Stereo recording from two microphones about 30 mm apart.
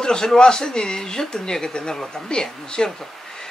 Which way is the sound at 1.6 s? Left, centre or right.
Left.